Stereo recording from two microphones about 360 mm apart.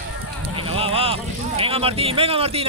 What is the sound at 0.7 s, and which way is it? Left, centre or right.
A man's voice, centre.